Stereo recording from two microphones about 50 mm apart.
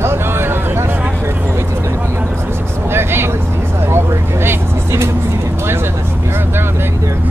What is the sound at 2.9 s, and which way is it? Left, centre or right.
Vehicle, right.